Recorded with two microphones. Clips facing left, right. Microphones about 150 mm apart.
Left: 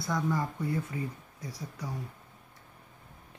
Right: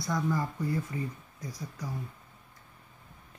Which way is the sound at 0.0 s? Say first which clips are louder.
Even; centre (ahead or behind).